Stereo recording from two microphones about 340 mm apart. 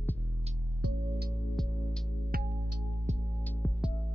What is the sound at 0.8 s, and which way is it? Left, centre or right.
Music, right.